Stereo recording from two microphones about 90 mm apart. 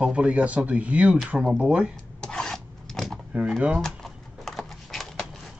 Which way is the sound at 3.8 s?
5° left (ahead or behind).